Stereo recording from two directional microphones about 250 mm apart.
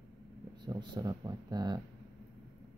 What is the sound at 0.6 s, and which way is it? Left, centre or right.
Speech, centre.